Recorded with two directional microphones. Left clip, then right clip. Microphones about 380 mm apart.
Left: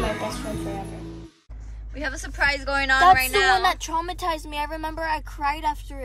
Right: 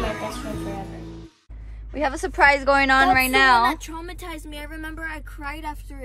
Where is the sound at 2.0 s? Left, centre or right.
Centre.